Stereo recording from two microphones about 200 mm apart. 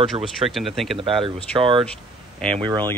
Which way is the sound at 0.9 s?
25° right (ahead or behind).